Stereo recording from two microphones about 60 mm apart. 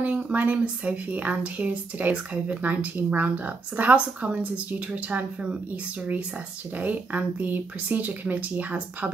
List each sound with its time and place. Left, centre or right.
0.0 s speech: right
6.8 s speech: right